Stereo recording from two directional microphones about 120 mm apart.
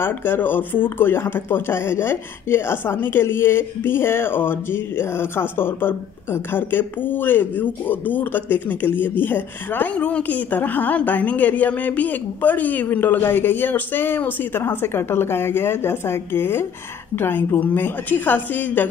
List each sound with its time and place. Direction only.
0.0 s speech: 15° left (ahead or behind)